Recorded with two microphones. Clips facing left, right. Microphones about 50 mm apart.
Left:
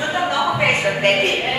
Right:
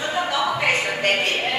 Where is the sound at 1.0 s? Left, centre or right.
Left.